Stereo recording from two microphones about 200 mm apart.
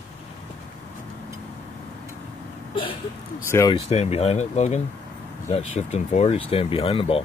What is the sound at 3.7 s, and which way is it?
Speech, 30° left (ahead or behind).